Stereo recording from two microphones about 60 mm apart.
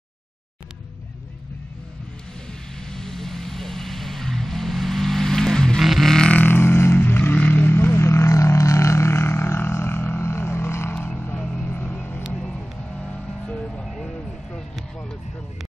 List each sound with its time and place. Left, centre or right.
2.8 s vehicle: centre
5.8 s music: centre
6.4 s vehicle: left
11.0 s vehicle: left
11.7 s vehicle: left
12.4 s vehicle: centre
13.0 s music: centre
13.8 s a sound: centre